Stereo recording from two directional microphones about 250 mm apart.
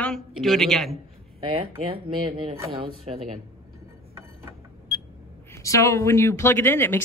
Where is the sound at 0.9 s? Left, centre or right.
Right.